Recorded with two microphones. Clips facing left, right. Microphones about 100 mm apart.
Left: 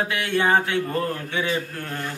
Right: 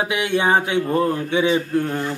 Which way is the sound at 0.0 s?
15° right (ahead or behind).